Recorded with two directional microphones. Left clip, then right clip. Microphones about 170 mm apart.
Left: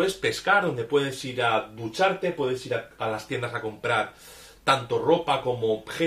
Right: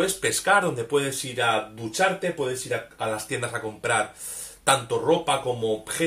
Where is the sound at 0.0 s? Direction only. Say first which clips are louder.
Right 1 dB; 15° right (ahead or behind).